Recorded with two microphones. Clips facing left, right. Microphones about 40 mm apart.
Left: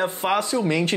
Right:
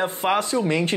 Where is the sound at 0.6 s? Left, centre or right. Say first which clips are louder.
Even; centre.